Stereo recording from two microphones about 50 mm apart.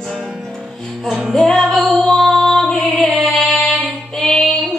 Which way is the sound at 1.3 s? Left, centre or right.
Centre.